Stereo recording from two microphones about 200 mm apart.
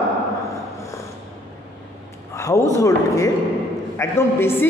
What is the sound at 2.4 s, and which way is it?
A man's voice, 15° left (ahead or behind).